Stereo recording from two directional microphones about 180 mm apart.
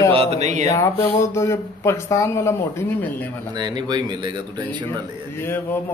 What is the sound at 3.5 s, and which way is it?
A man's voice, 25° right (ahead or behind).